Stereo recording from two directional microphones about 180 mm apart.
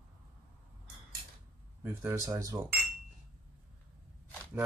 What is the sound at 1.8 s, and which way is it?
Speech, 10° right (ahead or behind).